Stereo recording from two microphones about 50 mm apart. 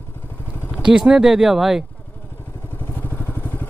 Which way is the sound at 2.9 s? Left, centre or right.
Left.